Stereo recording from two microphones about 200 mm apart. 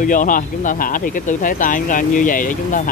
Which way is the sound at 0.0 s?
40° left (ahead or behind).